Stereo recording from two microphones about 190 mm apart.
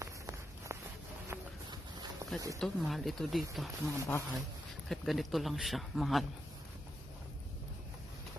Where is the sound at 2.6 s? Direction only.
Centre (ahead or behind).